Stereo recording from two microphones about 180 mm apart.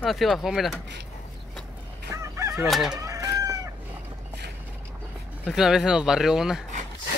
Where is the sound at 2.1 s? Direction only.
15° right (ahead or behind).